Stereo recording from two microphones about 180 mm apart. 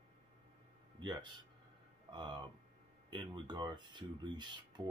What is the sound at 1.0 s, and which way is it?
Speech, 25° right (ahead or behind).